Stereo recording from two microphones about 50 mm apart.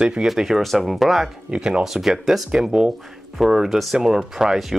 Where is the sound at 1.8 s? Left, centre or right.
Centre.